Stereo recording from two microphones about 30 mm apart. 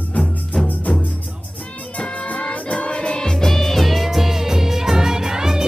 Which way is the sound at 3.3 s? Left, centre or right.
Centre.